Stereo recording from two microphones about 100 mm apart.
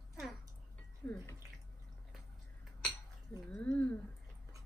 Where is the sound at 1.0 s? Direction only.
15° left (ahead or behind).